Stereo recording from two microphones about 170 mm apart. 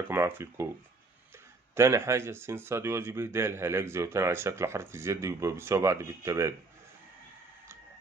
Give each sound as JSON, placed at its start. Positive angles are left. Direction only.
{"t": 0.1, "sound": "speech", "side_deg": -15}
{"t": 1.8, "sound": "speech", "side_deg": -15}